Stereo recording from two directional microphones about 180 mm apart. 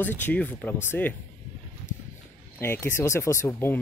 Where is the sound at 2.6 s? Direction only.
15° left (ahead or behind).